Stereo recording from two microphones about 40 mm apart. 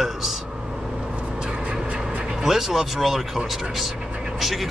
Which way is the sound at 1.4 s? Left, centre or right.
Right.